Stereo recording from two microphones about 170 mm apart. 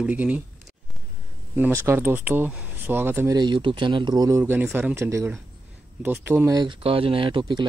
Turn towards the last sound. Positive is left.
turn(degrees=-30)  # may be behind; listen again after turning